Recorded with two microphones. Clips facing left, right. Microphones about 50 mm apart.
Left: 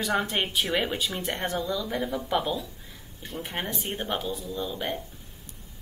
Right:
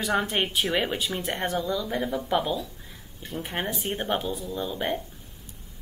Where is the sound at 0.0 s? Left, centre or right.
Centre.